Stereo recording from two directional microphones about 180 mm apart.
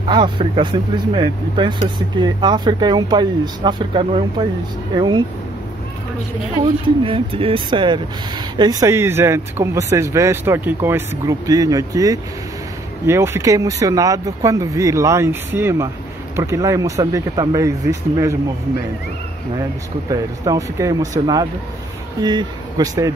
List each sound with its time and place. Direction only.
0.1 s speech: 25° right (ahead or behind)
6.6 s speech: 30° right (ahead or behind)
20.1 s speech: 20° right (ahead or behind)